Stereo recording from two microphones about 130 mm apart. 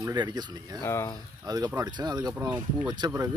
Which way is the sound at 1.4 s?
30° right (ahead or behind).